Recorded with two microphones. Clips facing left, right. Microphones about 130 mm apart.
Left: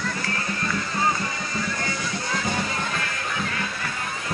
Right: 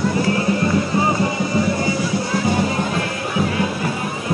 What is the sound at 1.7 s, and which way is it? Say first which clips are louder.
Music: right 9 dB; 10° right (ahead or behind).